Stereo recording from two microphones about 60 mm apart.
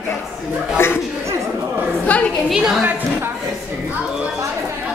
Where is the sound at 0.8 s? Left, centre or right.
Left.